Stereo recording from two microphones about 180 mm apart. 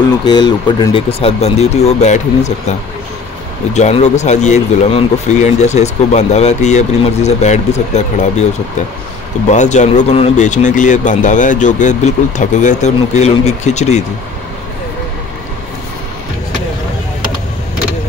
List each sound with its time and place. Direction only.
0.3 s speech: 25° left (ahead or behind); by 2.5 s 40° left (ahead or behind)
3.7 s speech: 40° left (ahead or behind)
9.5 s speech: 40° left (ahead or behind)